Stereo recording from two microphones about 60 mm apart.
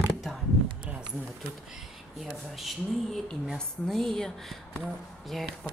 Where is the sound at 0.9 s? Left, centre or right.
Centre.